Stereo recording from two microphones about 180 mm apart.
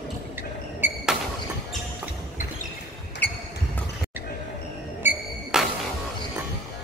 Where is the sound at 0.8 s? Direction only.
10° right (ahead or behind).